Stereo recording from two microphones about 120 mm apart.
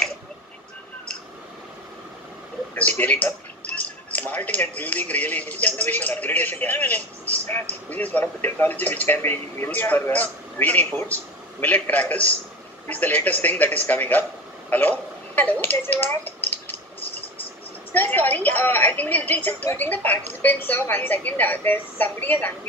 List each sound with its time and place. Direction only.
3.0 s speech: 15° left (ahead or behind)
14.7 s a sound: 15° left (ahead or behind)
17.9 s speech: 15° left (ahead or behind)